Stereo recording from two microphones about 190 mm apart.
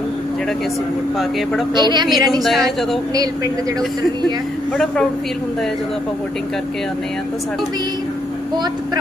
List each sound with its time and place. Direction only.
1.8 s a woman's voice: 25° right (ahead or behind)
2.4 s speech: centre (ahead or behind)